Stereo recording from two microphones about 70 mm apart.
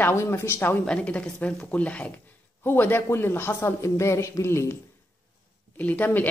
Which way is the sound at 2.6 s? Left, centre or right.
Left.